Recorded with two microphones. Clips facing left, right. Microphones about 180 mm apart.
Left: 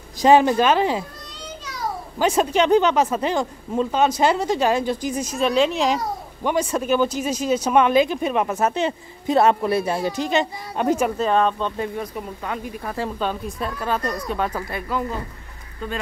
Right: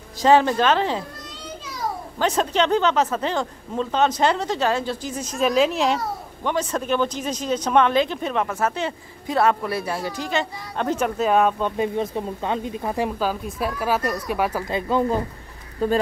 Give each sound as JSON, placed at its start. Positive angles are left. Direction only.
{"t": 0.2, "sound": "speech", "side_deg": 15}
{"t": 2.1, "sound": "speech", "side_deg": 10}
{"t": 5.4, "sound": "speech", "side_deg": -5}
{"t": 6.4, "sound": "speech", "side_deg": 10}
{"t": 11.1, "sound": "speech", "side_deg": -10}
{"t": 13.2, "sound": "a woman's voice", "side_deg": -5}
{"t": 14.7, "sound": "speech", "side_deg": -25}
{"t": 15.8, "sound": "speech", "side_deg": -35}